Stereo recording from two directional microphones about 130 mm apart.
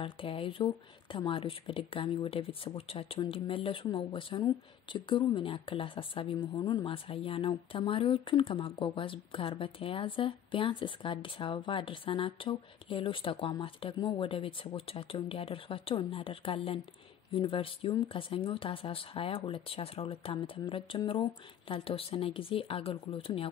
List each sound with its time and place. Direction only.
0.0 s speech: 45° left (ahead or behind)